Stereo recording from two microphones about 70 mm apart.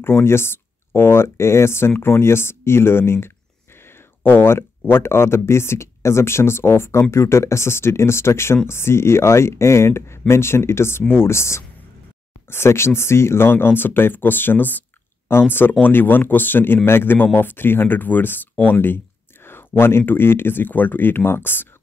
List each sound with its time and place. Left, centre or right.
0.0 s speech: left